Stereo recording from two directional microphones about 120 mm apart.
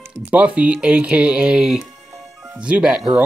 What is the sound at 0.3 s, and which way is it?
Speech, 10° right (ahead or behind).